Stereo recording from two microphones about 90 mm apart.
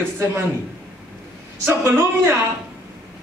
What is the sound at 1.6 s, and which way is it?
Speech, 25° right (ahead or behind).